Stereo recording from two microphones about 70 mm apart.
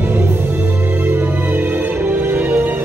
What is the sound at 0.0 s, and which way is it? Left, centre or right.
Music, right.